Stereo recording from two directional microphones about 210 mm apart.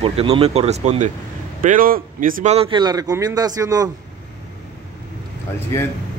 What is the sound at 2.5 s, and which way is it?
A man's voice, 25° right (ahead or behind).